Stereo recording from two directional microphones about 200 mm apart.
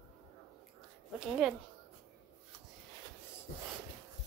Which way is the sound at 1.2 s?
Centre (ahead or behind).